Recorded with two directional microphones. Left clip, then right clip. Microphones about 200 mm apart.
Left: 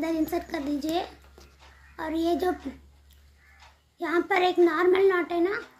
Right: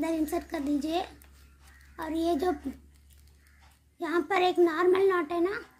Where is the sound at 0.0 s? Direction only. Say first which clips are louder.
Left 2 dB; 15° right (ahead or behind).